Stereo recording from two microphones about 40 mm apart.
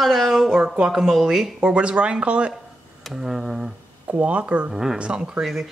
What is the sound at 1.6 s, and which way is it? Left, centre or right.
Speech, right.